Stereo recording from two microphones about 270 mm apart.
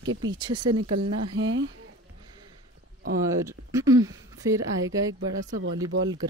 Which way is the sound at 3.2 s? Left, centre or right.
Centre.